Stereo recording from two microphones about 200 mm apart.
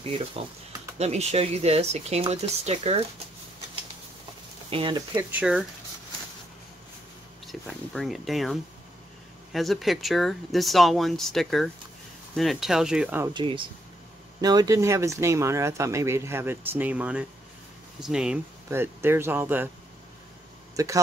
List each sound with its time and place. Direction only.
0.9 s speech: 30° right (ahead or behind)
4.6 s speech: 25° right (ahead or behind)
5.1 s speech: 5° right (ahead or behind)
7.4 s speech: centre (ahead or behind)
13.3 s speech: 25° right (ahead or behind)
20.7 s speech: 15° right (ahead or behind)